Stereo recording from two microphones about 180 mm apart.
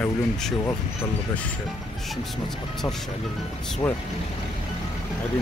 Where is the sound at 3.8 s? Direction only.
10° left (ahead or behind).